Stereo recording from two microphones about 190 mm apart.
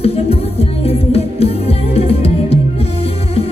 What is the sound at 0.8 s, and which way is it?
Music, 30° left (ahead or behind).